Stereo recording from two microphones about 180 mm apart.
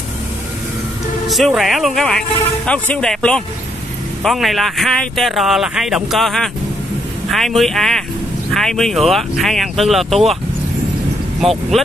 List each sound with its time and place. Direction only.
1.3 s speech: centre (ahead or behind)